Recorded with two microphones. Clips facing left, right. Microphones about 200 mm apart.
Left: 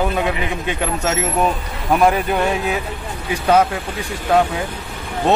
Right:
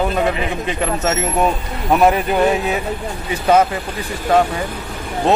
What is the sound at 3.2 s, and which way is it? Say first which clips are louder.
Speech: right 1 dB; 5° right (ahead or behind).